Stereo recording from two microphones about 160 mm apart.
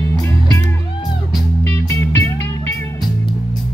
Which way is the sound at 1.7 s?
15° left (ahead or behind).